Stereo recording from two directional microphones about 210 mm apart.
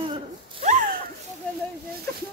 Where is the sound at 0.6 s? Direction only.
35° right (ahead or behind).